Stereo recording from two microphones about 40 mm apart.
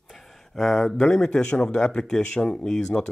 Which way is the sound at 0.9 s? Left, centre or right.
Left.